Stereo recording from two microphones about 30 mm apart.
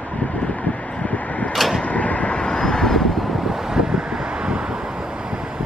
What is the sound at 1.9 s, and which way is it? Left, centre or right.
Vehicle, left.